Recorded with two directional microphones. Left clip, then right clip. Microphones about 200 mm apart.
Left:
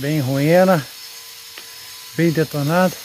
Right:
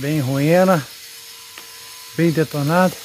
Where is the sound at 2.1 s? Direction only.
15° right (ahead or behind).